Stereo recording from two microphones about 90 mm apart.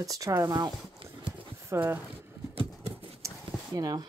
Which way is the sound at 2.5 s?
90° right.